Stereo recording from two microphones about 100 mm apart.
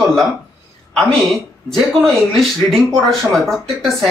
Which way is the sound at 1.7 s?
Centre (ahead or behind).